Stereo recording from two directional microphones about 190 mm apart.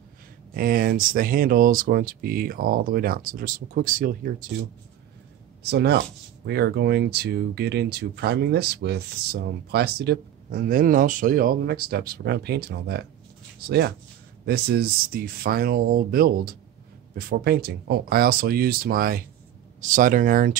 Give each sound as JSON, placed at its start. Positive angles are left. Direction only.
{"t": 0.6, "sound": "speech", "side_deg": -50}
{"t": 5.6, "sound": "speech", "side_deg": -60}